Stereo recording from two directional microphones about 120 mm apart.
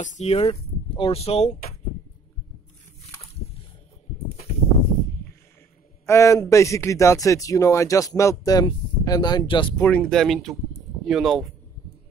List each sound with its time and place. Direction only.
0.0 s speech: 90° left
0.3 s speech: 55° left (ahead or behind)
6.0 s speech: 25° left (ahead or behind); by 9.7 s 40° left (ahead or behind)
9.8 s speech: 10° left (ahead or behind)